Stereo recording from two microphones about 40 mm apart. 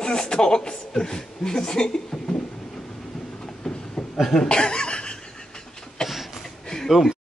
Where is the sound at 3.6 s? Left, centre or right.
Centre.